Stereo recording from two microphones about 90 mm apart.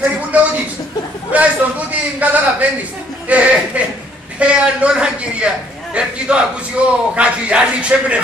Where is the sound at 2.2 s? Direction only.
15° right (ahead or behind).